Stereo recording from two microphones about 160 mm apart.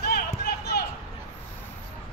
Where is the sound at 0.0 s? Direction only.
75° left (ahead or behind).